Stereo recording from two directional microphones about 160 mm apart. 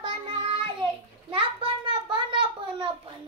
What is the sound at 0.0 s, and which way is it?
Child singing, 35° right (ahead or behind).